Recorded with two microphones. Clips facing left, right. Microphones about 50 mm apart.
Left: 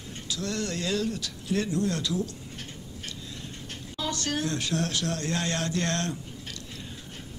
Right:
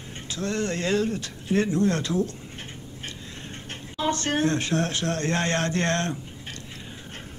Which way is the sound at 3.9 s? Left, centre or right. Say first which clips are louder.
Right 6 dB; right.